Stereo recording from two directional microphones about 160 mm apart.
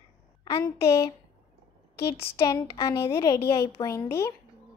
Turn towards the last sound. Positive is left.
turn(degrees=15)  # may be behind; listen again after turning